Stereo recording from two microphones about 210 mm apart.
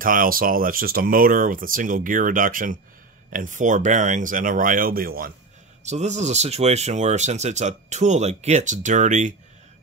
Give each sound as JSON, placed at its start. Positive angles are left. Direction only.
{"t": 0.0, "sound": "speech", "side_deg": -40}
{"t": 5.9, "sound": "speech", "side_deg": -35}